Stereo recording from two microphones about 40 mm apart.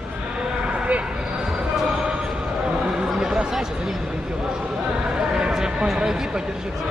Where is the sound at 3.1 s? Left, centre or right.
Centre.